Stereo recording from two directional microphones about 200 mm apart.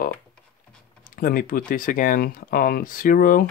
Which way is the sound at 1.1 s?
45° left (ahead or behind).